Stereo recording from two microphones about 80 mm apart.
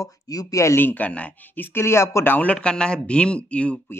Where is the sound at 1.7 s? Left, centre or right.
Left; by 3.8 s centre.